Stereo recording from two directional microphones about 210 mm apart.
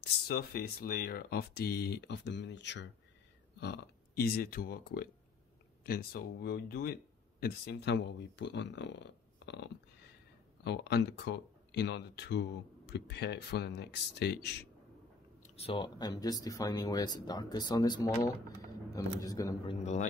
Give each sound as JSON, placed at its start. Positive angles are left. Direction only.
{"t": 0.0, "sound": "speech", "side_deg": 45}
{"t": 15.4, "sound": "speech", "side_deg": 30}
{"t": 19.2, "sound": "a man's voice", "side_deg": 15}
{"t": 19.8, "sound": "a man's voice", "side_deg": 35}